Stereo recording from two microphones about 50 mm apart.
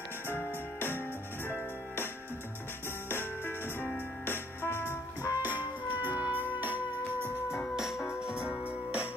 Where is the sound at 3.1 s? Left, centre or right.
Left.